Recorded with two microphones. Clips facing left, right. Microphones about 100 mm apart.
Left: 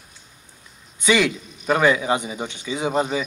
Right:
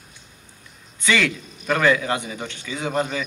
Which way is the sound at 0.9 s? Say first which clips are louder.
Left 2 dB; 15° left (ahead or behind).